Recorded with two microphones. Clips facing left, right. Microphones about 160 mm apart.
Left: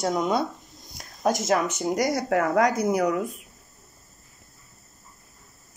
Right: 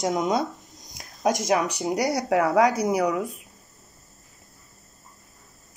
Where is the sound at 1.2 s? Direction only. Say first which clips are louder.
Even; 15° right (ahead or behind).